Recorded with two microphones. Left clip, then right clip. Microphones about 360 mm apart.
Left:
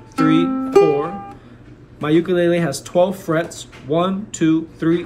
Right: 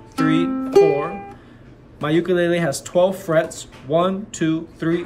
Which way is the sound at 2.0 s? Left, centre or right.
Centre.